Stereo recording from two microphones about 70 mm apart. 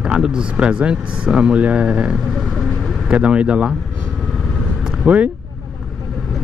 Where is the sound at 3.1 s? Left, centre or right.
Centre.